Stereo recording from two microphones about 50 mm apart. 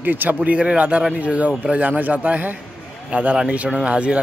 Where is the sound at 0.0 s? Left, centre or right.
Right.